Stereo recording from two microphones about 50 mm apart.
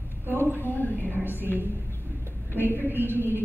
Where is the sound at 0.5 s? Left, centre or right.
Left.